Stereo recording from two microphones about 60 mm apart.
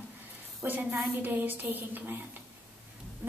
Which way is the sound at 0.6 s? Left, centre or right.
Right.